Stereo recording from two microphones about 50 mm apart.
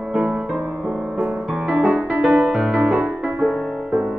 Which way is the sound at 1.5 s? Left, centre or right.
Centre.